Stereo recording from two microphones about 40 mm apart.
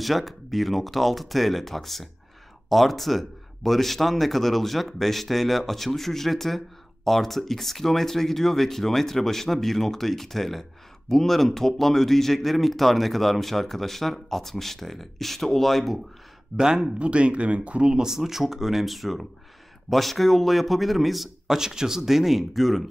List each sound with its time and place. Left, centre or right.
0.0 s speech: centre
16.5 s speech: centre
17.0 s speech: right
17.9 s speech: centre